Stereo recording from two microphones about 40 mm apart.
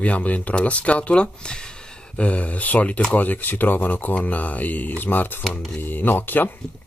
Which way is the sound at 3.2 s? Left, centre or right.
Left.